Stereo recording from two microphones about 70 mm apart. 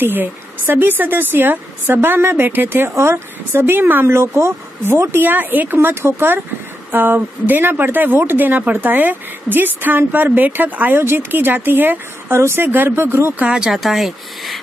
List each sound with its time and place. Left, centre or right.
0.0 s a woman's voice: right
13.5 s speech: centre